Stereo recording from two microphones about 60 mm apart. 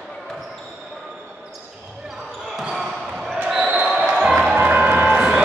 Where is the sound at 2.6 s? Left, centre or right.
Centre.